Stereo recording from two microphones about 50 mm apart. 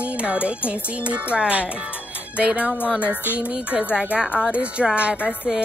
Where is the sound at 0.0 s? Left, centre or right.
Right.